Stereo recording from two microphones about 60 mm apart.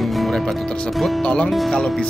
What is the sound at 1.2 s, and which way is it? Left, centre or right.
Speech, centre.